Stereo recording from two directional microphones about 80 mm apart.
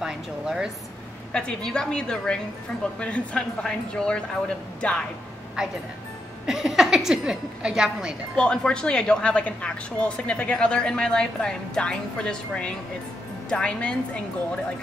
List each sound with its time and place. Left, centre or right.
0.0 s a woman's voice: centre
1.3 s a woman's voice: centre
6.4 s a woman's voice: centre
8.4 s a woman's voice: centre